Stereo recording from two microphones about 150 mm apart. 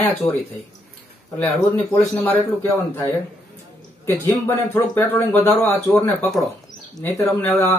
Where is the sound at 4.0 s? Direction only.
15° left (ahead or behind).